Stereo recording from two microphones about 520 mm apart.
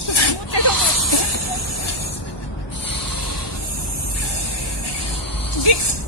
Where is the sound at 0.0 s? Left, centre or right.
Left.